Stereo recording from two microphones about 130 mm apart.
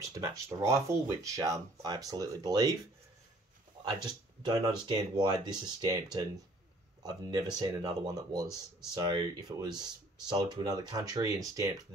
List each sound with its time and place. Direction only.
0.0 s speech: 25° right (ahead or behind)
3.8 s speech: 35° right (ahead or behind)